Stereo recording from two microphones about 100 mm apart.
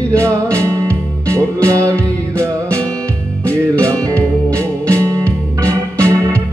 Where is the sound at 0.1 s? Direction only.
30° right (ahead or behind).